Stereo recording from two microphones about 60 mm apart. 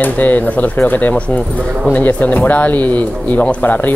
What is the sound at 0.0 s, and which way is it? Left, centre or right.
Speech, left.